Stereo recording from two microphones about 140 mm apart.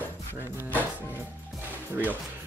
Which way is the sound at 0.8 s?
15° right (ahead or behind).